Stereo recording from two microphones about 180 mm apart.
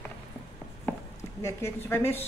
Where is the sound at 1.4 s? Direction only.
15° left (ahead or behind).